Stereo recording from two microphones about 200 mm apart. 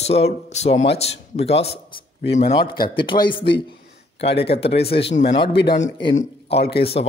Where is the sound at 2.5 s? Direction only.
20° left (ahead or behind).